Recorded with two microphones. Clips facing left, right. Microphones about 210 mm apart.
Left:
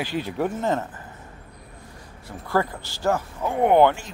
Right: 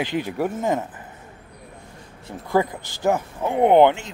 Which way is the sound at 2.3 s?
20° right (ahead or behind).